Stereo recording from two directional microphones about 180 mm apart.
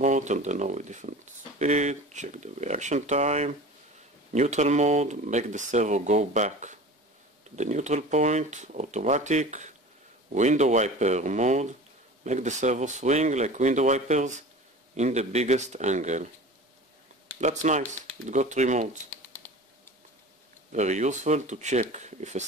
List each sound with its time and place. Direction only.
0.0 s speech: 40° right (ahead or behind)
17.4 s speech: 40° right (ahead or behind)
19.0 s a sound: 10° left (ahead or behind)
20.7 s speech: 40° right (ahead or behind)